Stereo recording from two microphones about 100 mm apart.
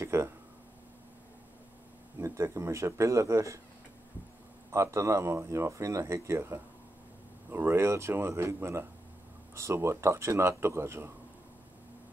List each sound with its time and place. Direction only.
0.0 s a sound: 25° right (ahead or behind)
2.1 s speech: 30° right (ahead or behind)
4.6 s speech: 30° right (ahead or behind)